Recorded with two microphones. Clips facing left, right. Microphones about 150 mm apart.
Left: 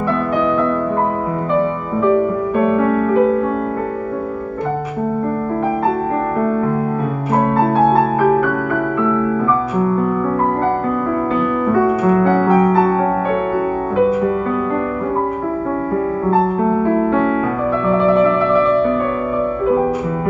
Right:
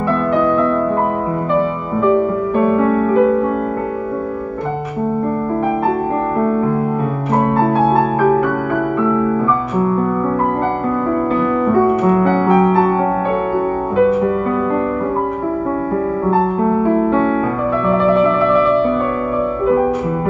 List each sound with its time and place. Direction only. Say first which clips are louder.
2.8 s music: right 1 dB; 30° right (ahead or behind)